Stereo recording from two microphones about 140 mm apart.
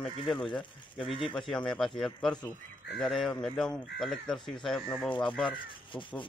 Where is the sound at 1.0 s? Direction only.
40° left (ahead or behind).